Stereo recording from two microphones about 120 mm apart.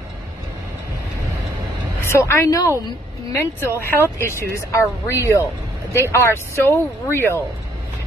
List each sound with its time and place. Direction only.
2.0 s speech: 20° left (ahead or behind)